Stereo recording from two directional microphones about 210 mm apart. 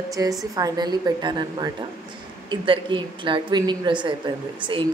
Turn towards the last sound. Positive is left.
turn(degrees=-25)  # may be behind; listen again after turning